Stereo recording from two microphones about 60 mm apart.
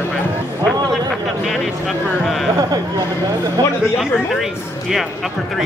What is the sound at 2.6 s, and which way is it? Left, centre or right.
Speech, right.